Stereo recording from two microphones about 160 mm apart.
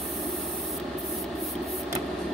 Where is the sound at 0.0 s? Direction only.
Centre (ahead or behind).